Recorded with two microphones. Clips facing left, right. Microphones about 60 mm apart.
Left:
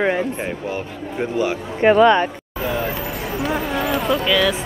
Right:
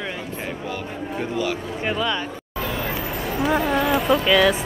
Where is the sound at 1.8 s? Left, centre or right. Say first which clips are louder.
Left 12 dB; left.